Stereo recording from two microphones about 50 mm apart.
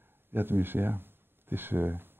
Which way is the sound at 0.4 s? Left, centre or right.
Right.